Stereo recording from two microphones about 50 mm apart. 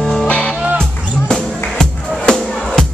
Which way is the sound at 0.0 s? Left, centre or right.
Centre.